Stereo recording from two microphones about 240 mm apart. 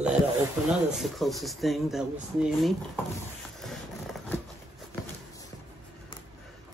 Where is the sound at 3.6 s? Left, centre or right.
Centre.